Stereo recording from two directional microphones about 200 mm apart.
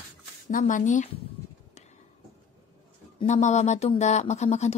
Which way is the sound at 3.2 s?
35° left (ahead or behind).